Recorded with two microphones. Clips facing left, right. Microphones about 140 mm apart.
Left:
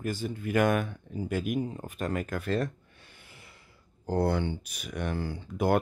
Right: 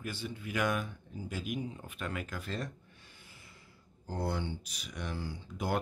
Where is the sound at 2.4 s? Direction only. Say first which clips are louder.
Left 10 dB; 60° left (ahead or behind).